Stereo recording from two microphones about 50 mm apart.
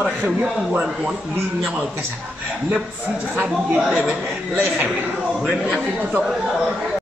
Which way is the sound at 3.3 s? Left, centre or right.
Right.